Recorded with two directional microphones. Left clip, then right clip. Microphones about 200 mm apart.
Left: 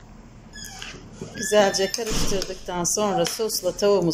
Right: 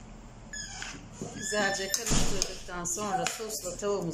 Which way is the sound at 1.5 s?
35° left (ahead or behind).